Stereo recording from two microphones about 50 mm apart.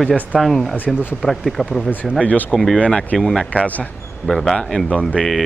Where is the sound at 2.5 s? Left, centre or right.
Centre.